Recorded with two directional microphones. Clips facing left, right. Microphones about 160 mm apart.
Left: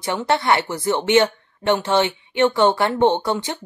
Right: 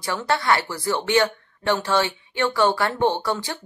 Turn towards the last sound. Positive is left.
turn(degrees=20)  # may be behind; listen again after turning